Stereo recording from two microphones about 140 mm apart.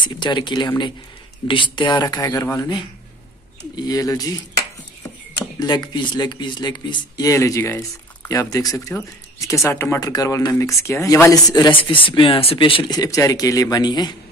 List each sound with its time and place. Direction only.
0.0 s speech: 35° left (ahead or behind)
5.6 s speech: 30° left (ahead or behind)